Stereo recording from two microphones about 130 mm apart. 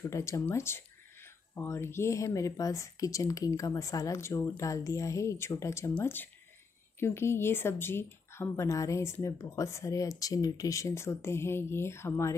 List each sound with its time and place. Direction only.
0.1 s speech: 20° left (ahead or behind)